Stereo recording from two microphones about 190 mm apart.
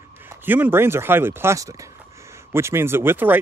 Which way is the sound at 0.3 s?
10° right (ahead or behind).